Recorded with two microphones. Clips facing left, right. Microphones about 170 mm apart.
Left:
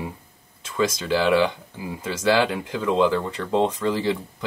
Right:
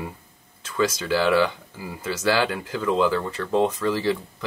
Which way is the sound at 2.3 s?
20° left (ahead or behind).